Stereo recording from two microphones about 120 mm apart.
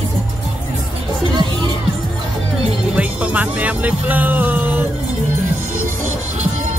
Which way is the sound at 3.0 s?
10° right (ahead or behind).